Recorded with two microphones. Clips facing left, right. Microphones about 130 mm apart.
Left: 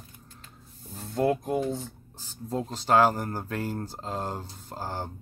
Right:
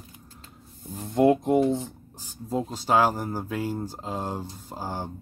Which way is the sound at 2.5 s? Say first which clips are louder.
Even; 5° right (ahead or behind).